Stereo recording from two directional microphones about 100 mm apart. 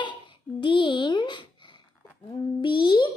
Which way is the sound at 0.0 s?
55° left (ahead or behind).